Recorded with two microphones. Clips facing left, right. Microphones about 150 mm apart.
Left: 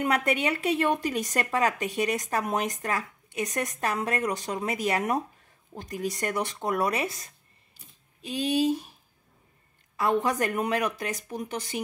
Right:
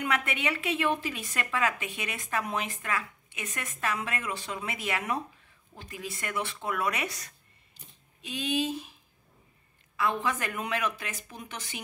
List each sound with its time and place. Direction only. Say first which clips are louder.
0.0 s a woman's voice: left 5 dB; 40° left (ahead or behind)
9.9 s a woman's voice: left 5 dB; 40° left (ahead or behind)